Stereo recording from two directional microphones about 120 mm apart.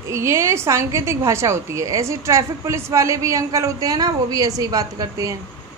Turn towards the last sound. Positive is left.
turn(degrees=-30)  # may be behind; listen again after turning